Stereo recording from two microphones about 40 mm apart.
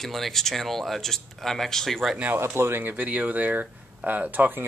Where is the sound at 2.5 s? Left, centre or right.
Right.